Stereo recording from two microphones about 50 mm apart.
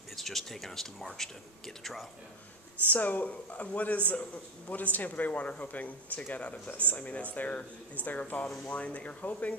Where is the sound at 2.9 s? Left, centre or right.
Left.